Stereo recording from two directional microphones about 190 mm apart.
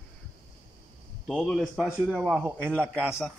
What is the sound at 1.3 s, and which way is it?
A man's voice, centre (ahead or behind).